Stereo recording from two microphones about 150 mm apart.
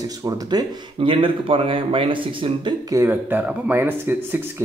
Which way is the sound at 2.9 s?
15° right (ahead or behind).